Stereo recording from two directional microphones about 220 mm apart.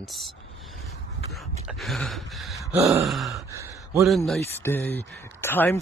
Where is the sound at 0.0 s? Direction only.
Centre (ahead or behind).